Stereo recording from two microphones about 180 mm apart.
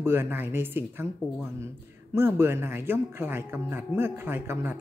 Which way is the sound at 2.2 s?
15° right (ahead or behind).